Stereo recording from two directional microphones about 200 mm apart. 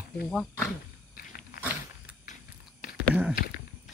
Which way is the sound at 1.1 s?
45° left (ahead or behind).